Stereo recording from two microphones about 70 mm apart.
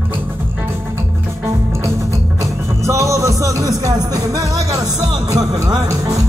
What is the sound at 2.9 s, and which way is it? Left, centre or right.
Music, right.